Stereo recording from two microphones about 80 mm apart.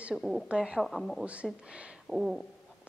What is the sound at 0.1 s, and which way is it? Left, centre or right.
Speech, centre.